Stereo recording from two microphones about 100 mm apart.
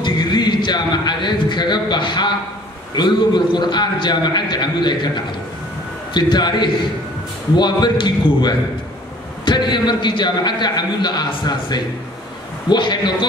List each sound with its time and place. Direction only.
0.0 s a man's voice: 50° left (ahead or behind)